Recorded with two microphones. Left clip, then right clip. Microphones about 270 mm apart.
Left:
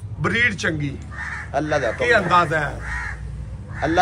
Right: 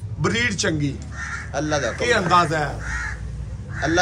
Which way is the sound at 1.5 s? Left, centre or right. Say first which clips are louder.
Left 2 dB; left.